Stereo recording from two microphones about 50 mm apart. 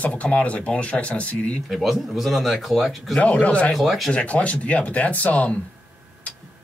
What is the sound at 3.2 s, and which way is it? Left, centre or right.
Speech, left.